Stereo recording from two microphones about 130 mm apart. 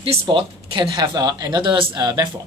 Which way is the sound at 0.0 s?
45° right (ahead or behind).